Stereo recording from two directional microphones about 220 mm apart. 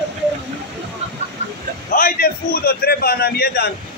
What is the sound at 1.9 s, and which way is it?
A man's voice, 40° left (ahead or behind).